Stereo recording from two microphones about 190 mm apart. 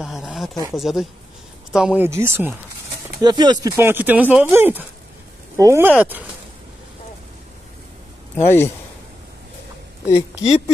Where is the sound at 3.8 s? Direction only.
10° right (ahead or behind).